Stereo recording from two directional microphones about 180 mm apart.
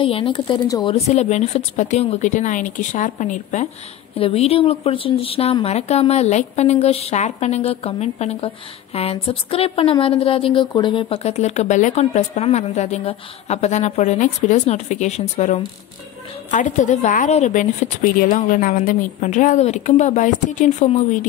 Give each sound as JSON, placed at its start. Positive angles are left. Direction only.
{"t": 0.0, "sound": "speech", "side_deg": 30}
{"t": 0.9, "sound": "a woman's voice", "side_deg": 40}
{"t": 4.2, "sound": "a woman's voice", "side_deg": 35}